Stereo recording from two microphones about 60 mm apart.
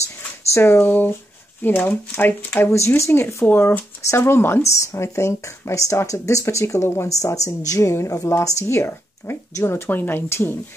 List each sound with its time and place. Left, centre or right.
0.6 s speech: left
3.1 s speech: left
3.4 s speech: left
4.0 s speech: left
9.8 s speech: left